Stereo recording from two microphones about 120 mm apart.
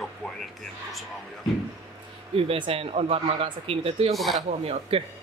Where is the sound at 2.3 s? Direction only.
50° right (ahead or behind).